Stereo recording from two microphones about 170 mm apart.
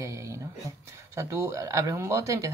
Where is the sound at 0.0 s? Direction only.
15° right (ahead or behind).